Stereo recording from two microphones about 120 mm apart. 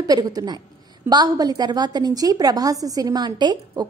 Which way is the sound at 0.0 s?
35° right (ahead or behind).